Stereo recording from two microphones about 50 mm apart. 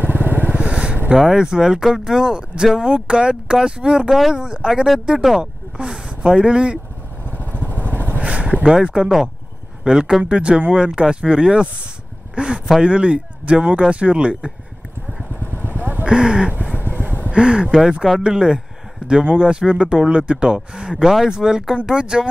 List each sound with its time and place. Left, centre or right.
0.0 s vehicle: right
0.5 s vehicle: right
1.1 s speech: centre
4.1 s speech: centre
4.4 s speech: centre
7.6 s vehicle: right
8.2 s a sound: right
8.6 s speech: centre
15.5 s vehicle: left
15.8 s a sound: right
16.1 s speech: centre
16.8 s vehicle: right
17.3 s speech: centre